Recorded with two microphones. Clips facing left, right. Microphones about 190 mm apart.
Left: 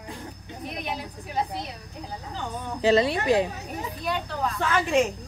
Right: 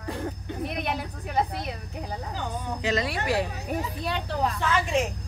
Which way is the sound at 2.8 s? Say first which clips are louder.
Left 7 dB; 25° left (ahead or behind).